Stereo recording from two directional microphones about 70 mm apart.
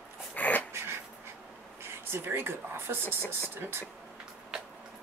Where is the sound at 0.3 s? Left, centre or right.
Left.